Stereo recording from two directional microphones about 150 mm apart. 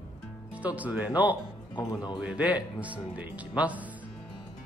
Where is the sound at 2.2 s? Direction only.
10° right (ahead or behind).